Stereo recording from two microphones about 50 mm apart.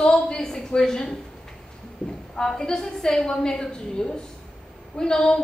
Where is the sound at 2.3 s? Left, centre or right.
Centre.